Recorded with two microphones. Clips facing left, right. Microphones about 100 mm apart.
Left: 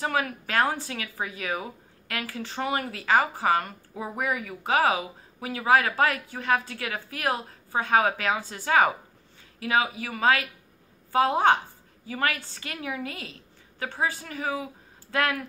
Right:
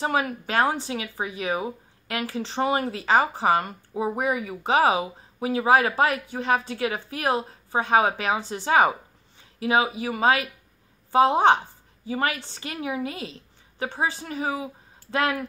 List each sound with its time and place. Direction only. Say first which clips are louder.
0.0 s a woman's voice: right 3 dB; 25° right (ahead or behind)